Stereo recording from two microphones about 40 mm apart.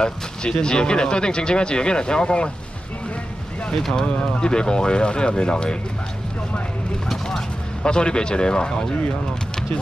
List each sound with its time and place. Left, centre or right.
0.0 s speech: left
3.7 s speech: centre
4.0 s speech: left
7.2 s speech: left